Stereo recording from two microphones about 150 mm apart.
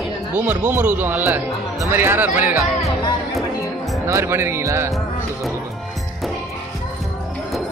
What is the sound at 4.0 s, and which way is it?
Speech, 15° right (ahead or behind).